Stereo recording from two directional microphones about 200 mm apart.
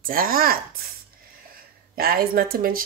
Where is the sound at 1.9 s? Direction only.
50° right (ahead or behind).